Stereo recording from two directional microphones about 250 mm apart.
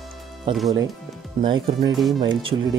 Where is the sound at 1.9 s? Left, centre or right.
Centre.